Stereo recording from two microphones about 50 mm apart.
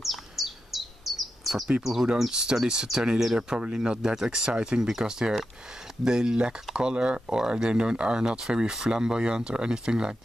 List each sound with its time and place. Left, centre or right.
0.0 s chirp: centre
2.1 s speech: centre